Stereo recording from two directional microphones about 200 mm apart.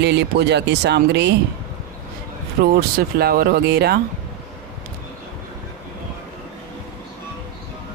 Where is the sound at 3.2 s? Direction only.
50° right (ahead or behind).